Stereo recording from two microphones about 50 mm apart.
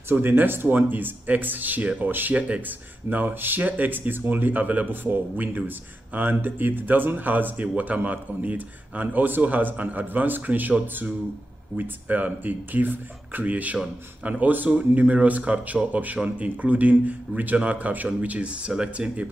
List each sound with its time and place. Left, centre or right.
0.1 s speech: right
11.7 s speech: right; by 19.2 s centre